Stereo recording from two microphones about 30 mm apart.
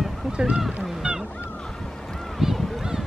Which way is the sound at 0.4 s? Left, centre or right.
Right.